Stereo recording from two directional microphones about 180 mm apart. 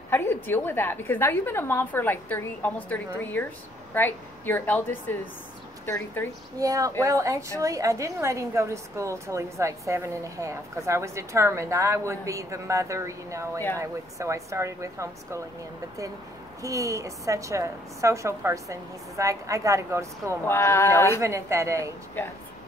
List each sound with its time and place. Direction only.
0.1 s a woman's voice: 10° left (ahead or behind)
6.6 s a woman's voice: 20° right (ahead or behind)
16.6 s a woman's voice: 15° right (ahead or behind)
20.4 s a woman's voice: 15° left (ahead or behind)
21.2 s a woman's voice: 15° right (ahead or behind)